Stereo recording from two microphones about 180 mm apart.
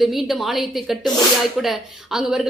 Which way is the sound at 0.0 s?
Centre (ahead or behind).